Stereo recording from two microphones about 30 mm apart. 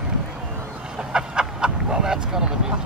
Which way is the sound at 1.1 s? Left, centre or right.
Right.